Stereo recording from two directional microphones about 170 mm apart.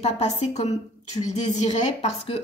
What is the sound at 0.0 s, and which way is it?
Speech, 40° left (ahead or behind).